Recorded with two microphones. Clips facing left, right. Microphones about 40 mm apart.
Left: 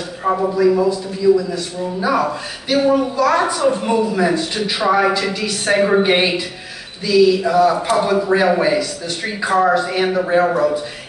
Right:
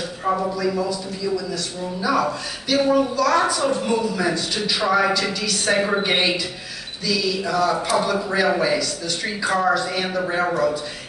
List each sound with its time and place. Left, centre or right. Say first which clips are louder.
0.2 s a man's voice: left 7 dB; centre